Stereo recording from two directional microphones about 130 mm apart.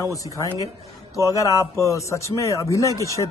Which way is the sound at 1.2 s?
25° left (ahead or behind).